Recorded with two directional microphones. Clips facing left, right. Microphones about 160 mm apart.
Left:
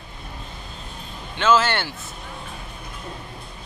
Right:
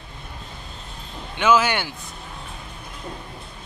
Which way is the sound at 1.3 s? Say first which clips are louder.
Even; 15° right (ahead or behind).